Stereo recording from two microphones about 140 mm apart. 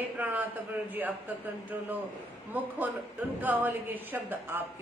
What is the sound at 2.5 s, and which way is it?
A woman's voice, 10° right (ahead or behind).